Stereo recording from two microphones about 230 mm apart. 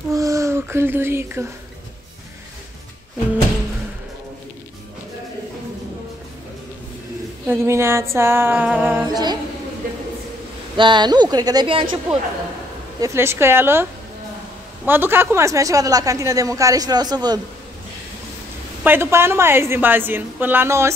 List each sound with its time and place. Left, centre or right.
0.1 s a sound: centre
7.4 s a woman's voice: centre
10.8 s speech: centre
13.0 s a woman's voice: centre
14.9 s a woman's voice: centre
18.9 s a woman's voice: centre